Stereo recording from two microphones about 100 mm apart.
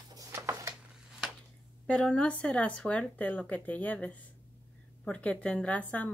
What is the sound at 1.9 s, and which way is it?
Speech, 10° left (ahead or behind).